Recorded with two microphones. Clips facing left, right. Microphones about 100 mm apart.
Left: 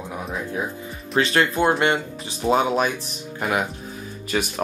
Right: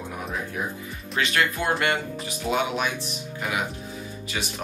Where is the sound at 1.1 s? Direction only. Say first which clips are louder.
Left 5 dB; 30° left (ahead or behind).